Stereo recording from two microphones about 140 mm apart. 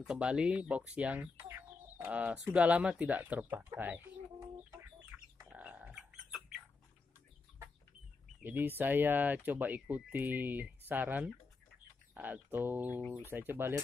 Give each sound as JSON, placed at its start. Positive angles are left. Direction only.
{"t": 0.0, "sound": "speech", "side_deg": -5}
{"t": 5.4, "sound": "pig", "side_deg": -10}
{"t": 8.4, "sound": "speech", "side_deg": -15}